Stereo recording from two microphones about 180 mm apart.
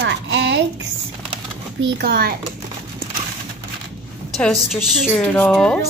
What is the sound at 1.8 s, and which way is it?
Speech, 60° right (ahead or behind).